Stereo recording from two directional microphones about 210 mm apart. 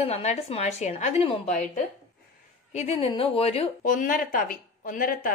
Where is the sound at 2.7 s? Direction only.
30° left (ahead or behind).